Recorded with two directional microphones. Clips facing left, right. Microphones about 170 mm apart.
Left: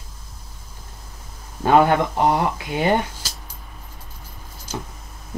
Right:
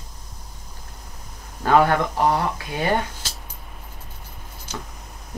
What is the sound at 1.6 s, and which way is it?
Speech, 20° left (ahead or behind).